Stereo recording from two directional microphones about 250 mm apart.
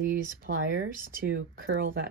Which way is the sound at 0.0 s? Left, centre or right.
Right.